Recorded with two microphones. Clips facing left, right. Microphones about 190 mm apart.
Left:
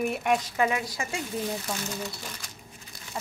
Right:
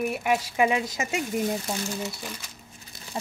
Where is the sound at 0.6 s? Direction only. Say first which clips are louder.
Right 3 dB; 20° right (ahead or behind).